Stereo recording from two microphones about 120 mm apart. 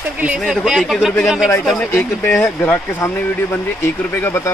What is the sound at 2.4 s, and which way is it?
Speech, 15° left (ahead or behind).